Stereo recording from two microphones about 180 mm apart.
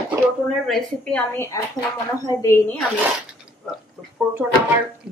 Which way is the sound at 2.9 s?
5° right (ahead or behind).